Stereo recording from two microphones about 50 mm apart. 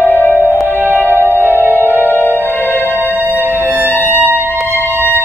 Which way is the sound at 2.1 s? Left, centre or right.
Left.